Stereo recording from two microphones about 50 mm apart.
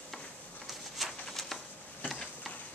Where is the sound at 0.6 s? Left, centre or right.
Centre.